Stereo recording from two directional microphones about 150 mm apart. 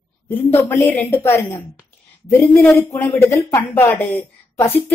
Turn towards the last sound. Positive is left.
turn(degrees=15)  # may be behind; listen again after turning